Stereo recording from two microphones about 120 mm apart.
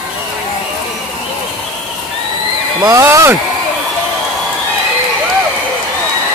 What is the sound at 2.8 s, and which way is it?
Speech, 25° right (ahead or behind).